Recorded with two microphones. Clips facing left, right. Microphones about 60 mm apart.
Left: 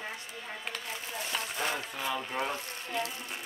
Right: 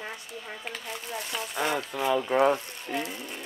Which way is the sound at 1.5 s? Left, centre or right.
Right.